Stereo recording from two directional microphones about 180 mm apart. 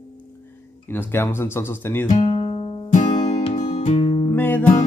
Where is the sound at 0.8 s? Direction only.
10° left (ahead or behind).